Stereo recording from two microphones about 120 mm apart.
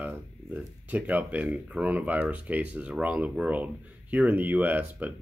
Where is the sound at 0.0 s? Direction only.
15° right (ahead or behind).